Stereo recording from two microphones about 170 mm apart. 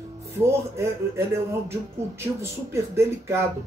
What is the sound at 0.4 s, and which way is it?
Speech, 15° right (ahead or behind).